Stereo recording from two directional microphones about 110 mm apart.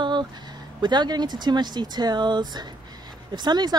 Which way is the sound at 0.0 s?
40° right (ahead or behind).